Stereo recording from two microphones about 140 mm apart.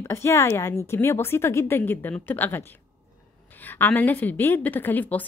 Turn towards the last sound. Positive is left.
turn(degrees=10)  # may be behind; listen again after turning